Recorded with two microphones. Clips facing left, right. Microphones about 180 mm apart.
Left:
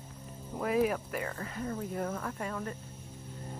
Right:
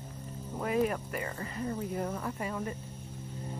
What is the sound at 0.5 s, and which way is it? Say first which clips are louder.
Speech: left 1 dB; centre (ahead or behind).